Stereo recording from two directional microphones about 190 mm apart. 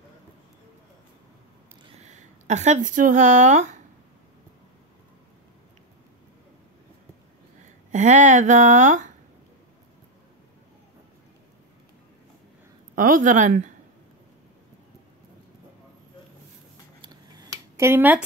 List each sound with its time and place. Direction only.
2.0 s speech: 35° right (ahead or behind)
7.9 s speech: 40° right (ahead or behind)
12.9 s speech: 45° right (ahead or behind)
17.0 s scissors: 20° right (ahead or behind)